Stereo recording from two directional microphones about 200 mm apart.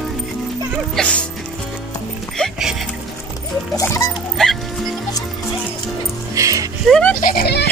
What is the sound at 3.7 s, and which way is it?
Music, 15° left (ahead or behind).